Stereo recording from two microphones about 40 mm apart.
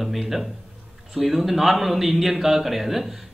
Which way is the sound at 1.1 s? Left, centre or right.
Centre.